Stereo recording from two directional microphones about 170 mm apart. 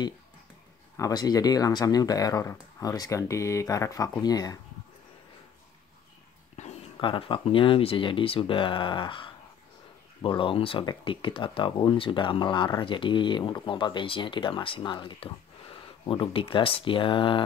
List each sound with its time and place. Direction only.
0.9 s speech: 20° left (ahead or behind)
6.6 s a sound: 45° left (ahead or behind)
7.0 s speech: 30° left (ahead or behind)